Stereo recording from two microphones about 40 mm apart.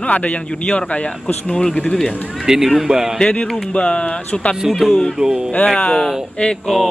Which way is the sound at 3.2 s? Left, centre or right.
Left.